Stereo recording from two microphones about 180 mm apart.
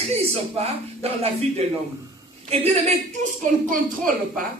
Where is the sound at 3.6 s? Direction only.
50° right (ahead or behind).